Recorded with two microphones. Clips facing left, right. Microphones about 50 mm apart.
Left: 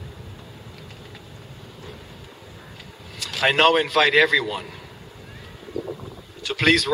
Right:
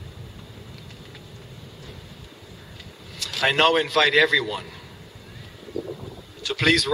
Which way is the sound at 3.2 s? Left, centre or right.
Centre.